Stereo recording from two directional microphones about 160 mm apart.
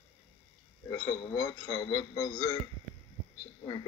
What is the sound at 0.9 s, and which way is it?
A man's voice, 20° left (ahead or behind).